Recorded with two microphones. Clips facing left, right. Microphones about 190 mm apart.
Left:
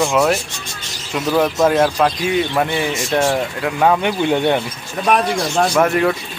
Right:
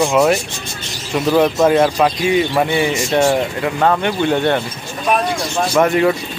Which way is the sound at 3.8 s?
10° left (ahead or behind).